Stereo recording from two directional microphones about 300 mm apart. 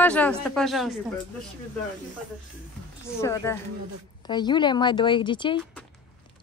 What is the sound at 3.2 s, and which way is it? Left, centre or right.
A woman's voice, centre.